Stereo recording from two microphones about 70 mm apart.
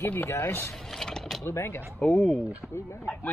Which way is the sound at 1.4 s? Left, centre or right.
Left.